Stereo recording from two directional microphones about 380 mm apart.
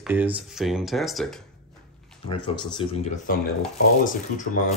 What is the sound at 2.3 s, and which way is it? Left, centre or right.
Speech, centre.